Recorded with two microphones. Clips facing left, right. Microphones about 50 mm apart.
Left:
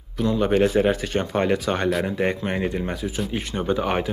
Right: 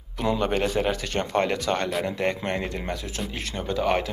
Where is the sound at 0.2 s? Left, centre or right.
Centre.